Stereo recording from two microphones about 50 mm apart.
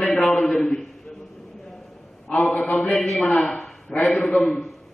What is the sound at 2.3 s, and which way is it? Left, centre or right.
Speech, left.